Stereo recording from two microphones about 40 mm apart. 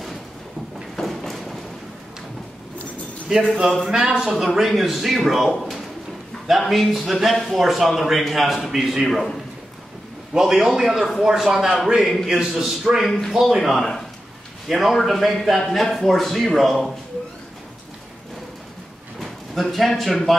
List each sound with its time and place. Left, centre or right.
0.9 s vehicle: centre
3.3 s a man's voice: centre
4.3 s a man's voice: centre
8.7 s a man's voice: centre
9.0 s a man's voice: centre
10.3 s a man's voice: centre
19.1 s speech: centre